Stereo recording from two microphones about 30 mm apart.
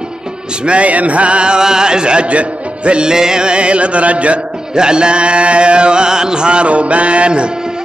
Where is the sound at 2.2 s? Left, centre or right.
Right.